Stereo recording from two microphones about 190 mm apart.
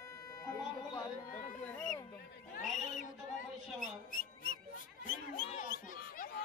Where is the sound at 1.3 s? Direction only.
40° left (ahead or behind).